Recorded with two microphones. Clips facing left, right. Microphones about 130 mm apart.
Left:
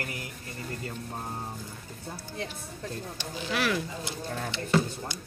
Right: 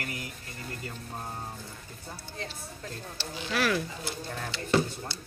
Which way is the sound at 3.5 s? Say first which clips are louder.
Right 1 dB; 20° left (ahead or behind).